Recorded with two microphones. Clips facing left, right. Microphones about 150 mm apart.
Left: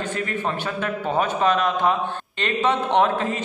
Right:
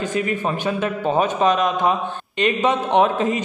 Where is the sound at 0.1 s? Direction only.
15° right (ahead or behind).